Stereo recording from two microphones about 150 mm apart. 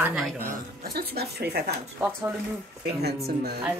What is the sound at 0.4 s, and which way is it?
Speech, 80° right.